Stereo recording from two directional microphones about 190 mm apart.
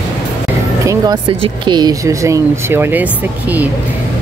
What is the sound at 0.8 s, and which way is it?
Speech, 20° right (ahead or behind).